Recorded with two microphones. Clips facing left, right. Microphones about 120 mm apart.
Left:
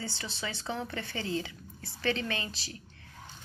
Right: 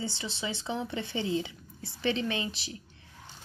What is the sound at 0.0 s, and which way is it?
Speech, 20° right (ahead or behind).